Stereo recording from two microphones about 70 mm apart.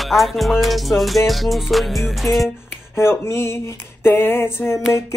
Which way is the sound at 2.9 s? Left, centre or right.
Left.